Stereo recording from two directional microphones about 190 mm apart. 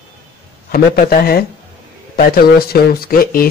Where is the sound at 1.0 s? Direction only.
50° left (ahead or behind).